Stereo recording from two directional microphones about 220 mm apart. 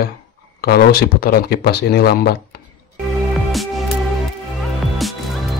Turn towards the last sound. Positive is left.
turn(degrees=0)  # may be behind; listen again after turning